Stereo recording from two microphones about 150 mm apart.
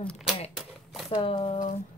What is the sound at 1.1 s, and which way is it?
Speech, 35° left (ahead or behind).